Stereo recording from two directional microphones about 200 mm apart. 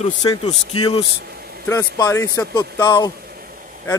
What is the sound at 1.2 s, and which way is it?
Vehicle, 50° right (ahead or behind).